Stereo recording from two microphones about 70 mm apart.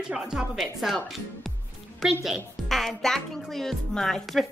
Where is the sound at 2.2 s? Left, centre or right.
Centre.